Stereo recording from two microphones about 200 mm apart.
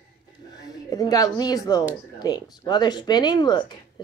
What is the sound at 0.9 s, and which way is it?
Speech, 20° left (ahead or behind).